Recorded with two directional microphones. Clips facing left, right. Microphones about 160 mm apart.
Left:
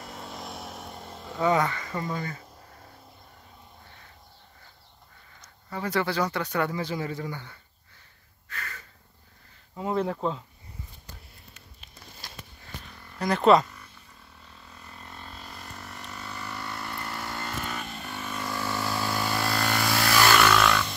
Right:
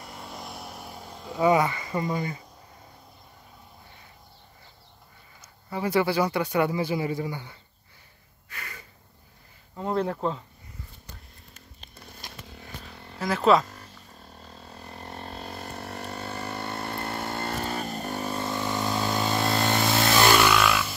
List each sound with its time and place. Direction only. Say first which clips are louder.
0.0 s vehicle: left 1 dB; centre (ahead or behind)
1.4 s speech: right 3 dB; 10° right (ahead or behind)
5.4 s speech: right 3 dB; 10° right (ahead or behind)
8.5 s a sound: left 2 dB; 15° right (ahead or behind)
9.8 s speech: right 1 dB; 5° left (ahead or behind)
13.2 s speech: left 1 dB; centre (ahead or behind)
14.4 s vehicle: right 6 dB; 35° right (ahead or behind)
15.0 s vehicle: right 7 dB; 55° right (ahead or behind)
16.1 s vehicle: right 3 dB; 30° right (ahead or behind)
18.4 s vehicle: even; 20° right (ahead or behind)
20.4 s music: even; 5° right (ahead or behind)